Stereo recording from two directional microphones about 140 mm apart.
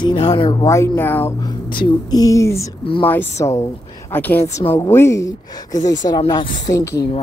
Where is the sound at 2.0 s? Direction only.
25° left (ahead or behind).